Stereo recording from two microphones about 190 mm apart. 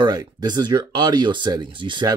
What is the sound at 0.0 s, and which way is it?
A man's voice, 20° right (ahead or behind).